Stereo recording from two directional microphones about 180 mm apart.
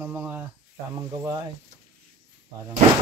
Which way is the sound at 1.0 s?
20° right (ahead or behind).